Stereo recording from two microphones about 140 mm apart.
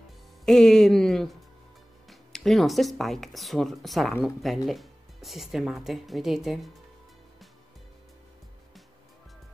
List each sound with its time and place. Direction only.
0.5 s speech: centre (ahead or behind)